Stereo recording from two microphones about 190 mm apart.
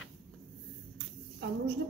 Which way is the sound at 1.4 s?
70° right (ahead or behind).